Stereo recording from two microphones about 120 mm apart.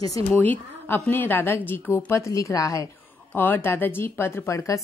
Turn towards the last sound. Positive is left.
turn(degrees=25)  # may be behind; listen again after turning